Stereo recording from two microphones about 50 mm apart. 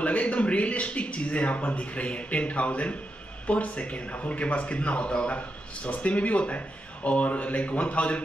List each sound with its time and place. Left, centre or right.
0.0 s speech: left